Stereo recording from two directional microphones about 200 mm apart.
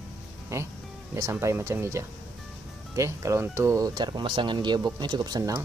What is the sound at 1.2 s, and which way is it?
Speech, 15° right (ahead or behind).